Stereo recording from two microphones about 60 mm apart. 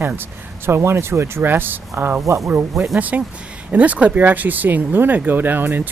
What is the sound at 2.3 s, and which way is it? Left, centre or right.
Speech, right.